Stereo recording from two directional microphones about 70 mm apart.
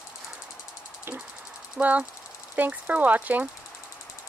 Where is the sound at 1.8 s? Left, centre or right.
Right.